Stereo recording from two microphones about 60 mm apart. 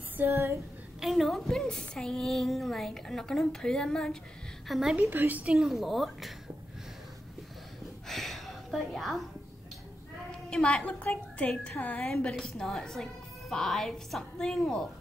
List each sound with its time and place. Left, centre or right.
0.3 s female singing: right
1.0 s a child's voice: centre
4.6 s a child's voice: centre
5.1 s a woman's voice: right
5.5 s a child's voice: centre
8.1 s a sound: centre
10.5 s a woman's voice: centre
12.3 s a woman's voice: centre